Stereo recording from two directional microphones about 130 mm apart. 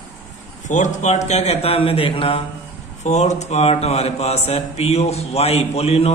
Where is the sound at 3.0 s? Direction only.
60° left (ahead or behind).